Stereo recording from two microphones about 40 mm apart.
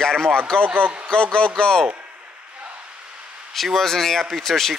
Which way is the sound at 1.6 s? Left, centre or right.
Centre.